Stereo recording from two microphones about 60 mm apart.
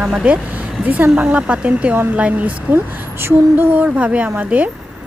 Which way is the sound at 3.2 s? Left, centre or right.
Right.